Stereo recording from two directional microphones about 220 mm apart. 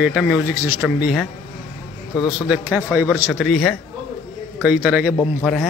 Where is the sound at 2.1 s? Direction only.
20° left (ahead or behind).